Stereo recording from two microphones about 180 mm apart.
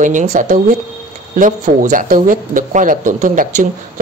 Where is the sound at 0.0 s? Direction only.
45° right (ahead or behind).